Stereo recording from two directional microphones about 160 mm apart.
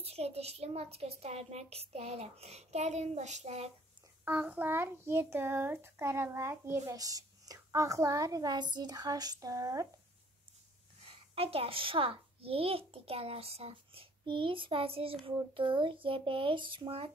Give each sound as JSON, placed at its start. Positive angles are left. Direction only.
{"t": 0.0, "sound": "a child's voice", "side_deg": -40}
{"t": 4.2, "sound": "a child's voice", "side_deg": -10}
{"t": 11.3, "sound": "a child's voice", "side_deg": -35}